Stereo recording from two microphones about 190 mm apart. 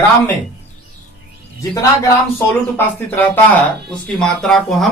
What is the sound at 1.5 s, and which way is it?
Speech, 15° left (ahead or behind).